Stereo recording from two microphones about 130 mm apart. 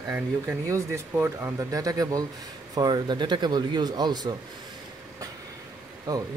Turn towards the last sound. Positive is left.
turn(degrees=-30)  # may be behind; listen again after turning